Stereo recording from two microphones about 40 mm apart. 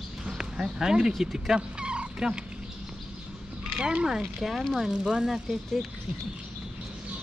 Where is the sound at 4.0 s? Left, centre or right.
Centre.